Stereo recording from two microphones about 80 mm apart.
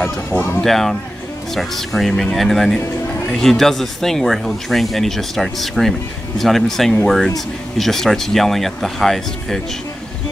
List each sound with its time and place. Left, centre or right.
0.0 s speech: left
0.6 s speech: centre